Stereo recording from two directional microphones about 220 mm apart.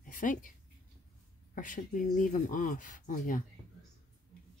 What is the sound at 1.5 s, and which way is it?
Speech, 35° left (ahead or behind).